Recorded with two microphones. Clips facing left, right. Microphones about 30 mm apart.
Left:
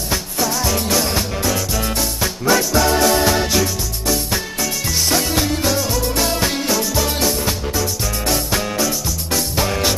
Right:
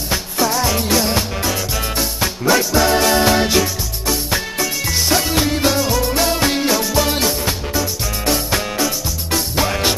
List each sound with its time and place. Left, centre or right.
0.1 s music: centre